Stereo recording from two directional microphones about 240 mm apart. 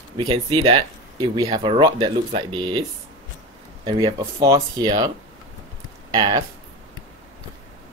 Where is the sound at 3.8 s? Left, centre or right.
Centre.